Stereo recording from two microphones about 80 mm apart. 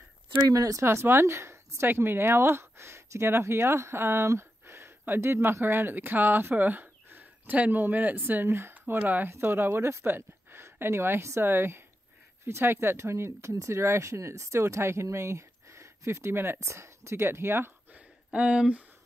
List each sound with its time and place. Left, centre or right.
0.5 s speech: right
0.8 s a woman's voice: right
18.3 s speech: centre